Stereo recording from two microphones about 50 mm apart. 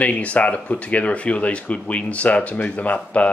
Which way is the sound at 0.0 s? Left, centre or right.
Left.